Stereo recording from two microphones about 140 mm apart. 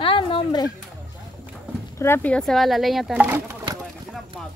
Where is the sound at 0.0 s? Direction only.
40° left (ahead or behind).